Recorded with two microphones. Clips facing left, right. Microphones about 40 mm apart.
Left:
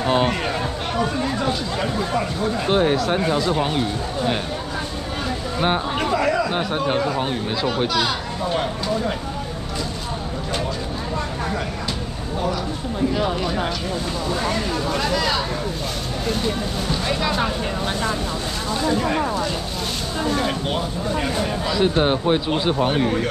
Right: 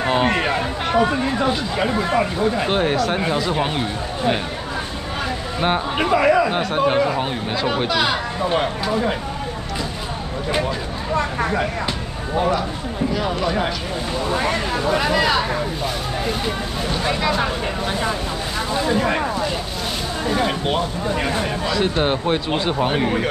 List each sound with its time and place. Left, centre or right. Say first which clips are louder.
0.3 s speech: right 3 dB; right
5.9 s speech: right 4 dB; right
11.1 s speech: right 7 dB; right
14.3 s speech: right 2 dB; right
17.0 s speech: right 3 dB; centre
18.8 s speech: right 1 dB; centre
21.6 s speech: left 1 dB; centre